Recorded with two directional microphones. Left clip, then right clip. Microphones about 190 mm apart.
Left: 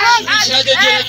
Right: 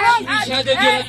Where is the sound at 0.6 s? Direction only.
40° right (ahead or behind).